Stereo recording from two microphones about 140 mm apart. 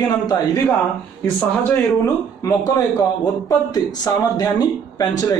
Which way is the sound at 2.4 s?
25° left (ahead or behind).